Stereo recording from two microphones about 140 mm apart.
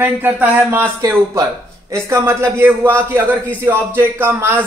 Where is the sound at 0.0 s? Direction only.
15° right (ahead or behind).